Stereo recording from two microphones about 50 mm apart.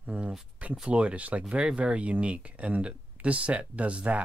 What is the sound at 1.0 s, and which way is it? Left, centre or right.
Speech, right.